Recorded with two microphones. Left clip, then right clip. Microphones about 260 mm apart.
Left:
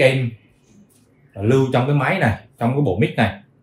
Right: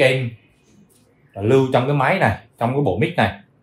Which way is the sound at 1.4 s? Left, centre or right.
Right.